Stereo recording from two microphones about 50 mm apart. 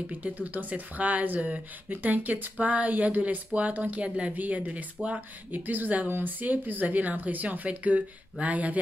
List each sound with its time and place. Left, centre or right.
0.1 s speech: right